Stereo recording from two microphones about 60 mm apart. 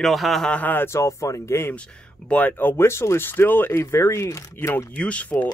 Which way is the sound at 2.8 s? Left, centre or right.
Left.